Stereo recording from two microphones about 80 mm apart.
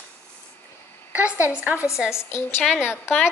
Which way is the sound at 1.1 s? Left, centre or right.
Centre.